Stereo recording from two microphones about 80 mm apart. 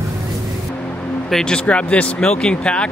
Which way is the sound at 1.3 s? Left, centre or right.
Centre.